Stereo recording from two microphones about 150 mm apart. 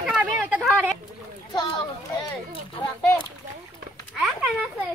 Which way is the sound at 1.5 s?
30° left (ahead or behind).